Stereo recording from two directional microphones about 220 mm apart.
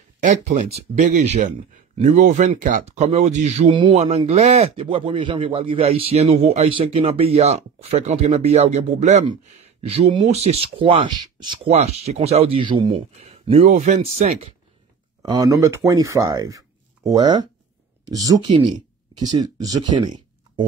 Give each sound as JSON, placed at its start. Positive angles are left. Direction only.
{"t": 0.2, "sound": "speech", "side_deg": -35}
{"t": 15.2, "sound": "speech", "side_deg": -15}